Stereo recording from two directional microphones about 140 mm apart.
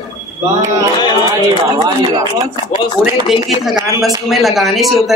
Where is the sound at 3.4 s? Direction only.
Centre (ahead or behind).